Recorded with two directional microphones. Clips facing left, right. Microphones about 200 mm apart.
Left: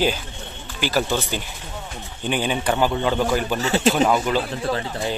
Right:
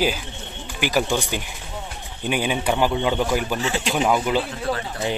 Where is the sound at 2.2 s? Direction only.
10° right (ahead or behind).